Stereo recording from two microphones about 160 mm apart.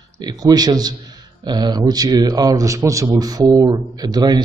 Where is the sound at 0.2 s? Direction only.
25° right (ahead or behind).